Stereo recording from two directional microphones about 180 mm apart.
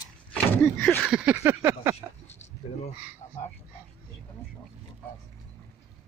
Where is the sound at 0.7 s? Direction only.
10° left (ahead or behind).